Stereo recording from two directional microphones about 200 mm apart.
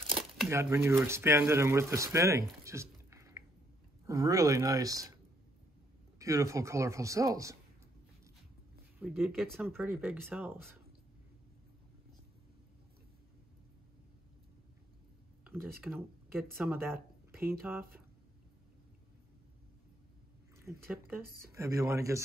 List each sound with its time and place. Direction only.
0.5 s speech: 10° right (ahead or behind)
2.6 s a sound: 15° right (ahead or behind)
4.0 s speech: 15° right (ahead or behind)
6.1 s speech: 15° right (ahead or behind)
9.0 s speech: centre (ahead or behind)
15.8 s speech: centre (ahead or behind)
20.5 s speech: 10° right (ahead or behind)